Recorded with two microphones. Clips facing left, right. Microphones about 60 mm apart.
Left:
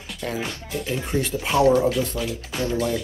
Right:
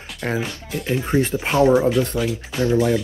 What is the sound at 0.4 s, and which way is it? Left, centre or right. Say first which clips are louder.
Speech: right 2 dB; centre.